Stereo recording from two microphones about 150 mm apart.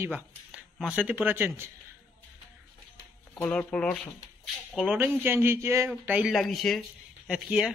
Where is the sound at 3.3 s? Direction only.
10° left (ahead or behind).